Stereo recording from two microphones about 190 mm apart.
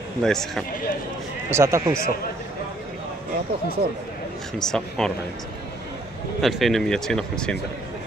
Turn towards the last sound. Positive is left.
turn(degrees=5)  # may be behind; listen again after turning